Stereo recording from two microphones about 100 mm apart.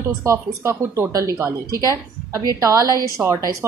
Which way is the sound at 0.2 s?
30° right (ahead or behind).